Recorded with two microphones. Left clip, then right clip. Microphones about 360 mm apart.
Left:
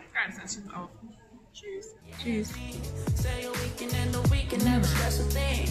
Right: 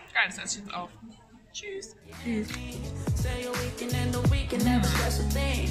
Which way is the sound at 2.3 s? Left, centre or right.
Centre.